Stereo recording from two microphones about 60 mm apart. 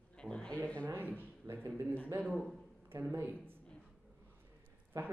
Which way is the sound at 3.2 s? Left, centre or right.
Right.